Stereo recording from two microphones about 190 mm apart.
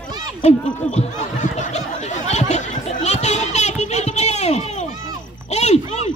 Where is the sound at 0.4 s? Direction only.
35° left (ahead or behind).